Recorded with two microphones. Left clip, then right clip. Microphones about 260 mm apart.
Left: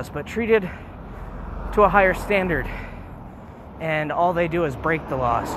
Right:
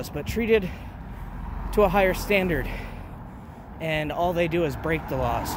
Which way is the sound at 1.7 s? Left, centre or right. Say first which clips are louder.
Left 4 dB; centre.